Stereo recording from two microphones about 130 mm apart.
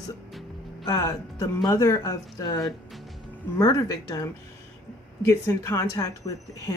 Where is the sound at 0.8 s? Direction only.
25° left (ahead or behind).